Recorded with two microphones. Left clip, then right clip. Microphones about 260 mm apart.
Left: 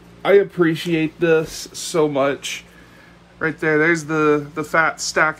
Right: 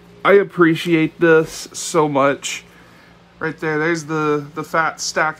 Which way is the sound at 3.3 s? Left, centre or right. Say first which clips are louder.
Left 3 dB; centre.